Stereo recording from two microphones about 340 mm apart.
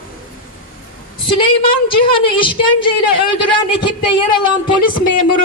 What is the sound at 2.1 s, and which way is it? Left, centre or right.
A woman's voice, centre.